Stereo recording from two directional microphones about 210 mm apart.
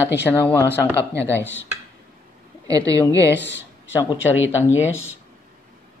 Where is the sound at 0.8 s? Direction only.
10° right (ahead or behind).